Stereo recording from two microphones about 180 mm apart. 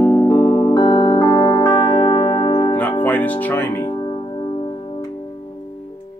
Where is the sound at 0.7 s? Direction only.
25° left (ahead or behind).